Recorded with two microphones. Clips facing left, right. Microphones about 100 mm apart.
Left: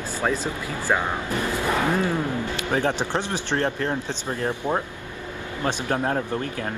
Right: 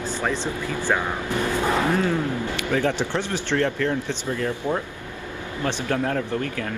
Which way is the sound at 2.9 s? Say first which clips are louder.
Even; 15° left (ahead or behind).